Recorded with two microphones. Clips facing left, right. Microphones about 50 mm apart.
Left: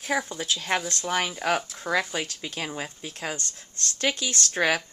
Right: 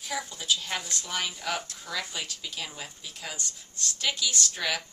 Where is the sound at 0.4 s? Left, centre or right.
Left.